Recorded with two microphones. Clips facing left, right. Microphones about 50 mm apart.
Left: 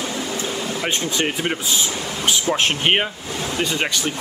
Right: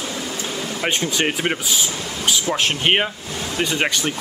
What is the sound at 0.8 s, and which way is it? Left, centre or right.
Speech, right.